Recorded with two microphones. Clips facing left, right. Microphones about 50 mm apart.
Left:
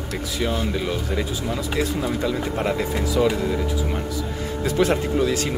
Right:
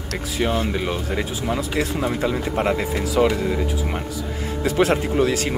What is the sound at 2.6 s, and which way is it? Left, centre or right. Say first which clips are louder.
Speech: right 4 dB; right.